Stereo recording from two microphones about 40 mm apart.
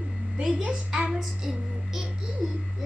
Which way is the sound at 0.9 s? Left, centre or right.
Centre.